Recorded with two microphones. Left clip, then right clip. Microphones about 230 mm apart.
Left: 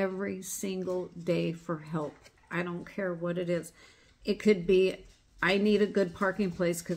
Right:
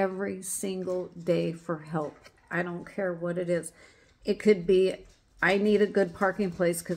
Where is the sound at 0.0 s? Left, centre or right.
Centre.